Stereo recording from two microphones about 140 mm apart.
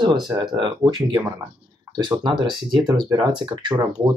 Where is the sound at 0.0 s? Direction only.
30° right (ahead or behind).